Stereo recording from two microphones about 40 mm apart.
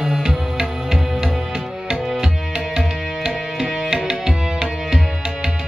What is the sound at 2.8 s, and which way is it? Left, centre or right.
Music, centre.